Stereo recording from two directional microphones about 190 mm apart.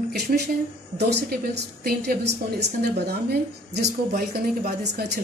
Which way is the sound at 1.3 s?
55° right (ahead or behind).